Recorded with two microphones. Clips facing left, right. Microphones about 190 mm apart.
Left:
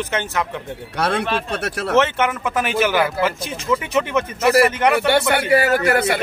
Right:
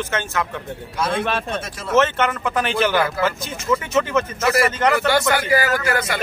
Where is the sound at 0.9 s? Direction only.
70° left (ahead or behind).